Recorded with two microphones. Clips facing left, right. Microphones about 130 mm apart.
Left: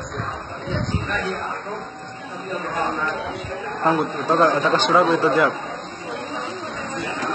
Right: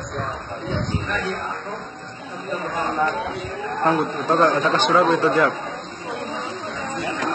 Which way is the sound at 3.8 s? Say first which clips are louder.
Even; 25° left (ahead or behind).